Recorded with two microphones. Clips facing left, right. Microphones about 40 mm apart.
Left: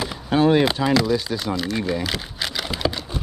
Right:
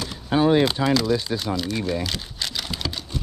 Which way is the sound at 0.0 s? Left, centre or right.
Centre.